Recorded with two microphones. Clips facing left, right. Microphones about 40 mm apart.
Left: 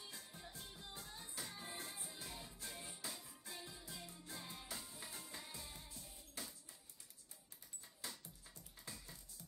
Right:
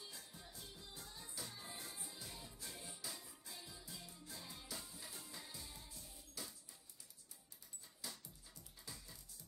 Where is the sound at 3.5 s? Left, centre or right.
Left.